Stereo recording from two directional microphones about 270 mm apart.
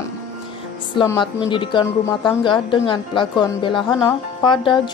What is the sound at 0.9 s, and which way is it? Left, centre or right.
A woman's voice, centre.